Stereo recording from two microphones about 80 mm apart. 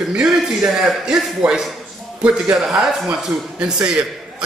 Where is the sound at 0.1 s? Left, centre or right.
Centre.